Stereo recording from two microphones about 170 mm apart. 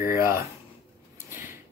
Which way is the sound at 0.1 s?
15° right (ahead or behind).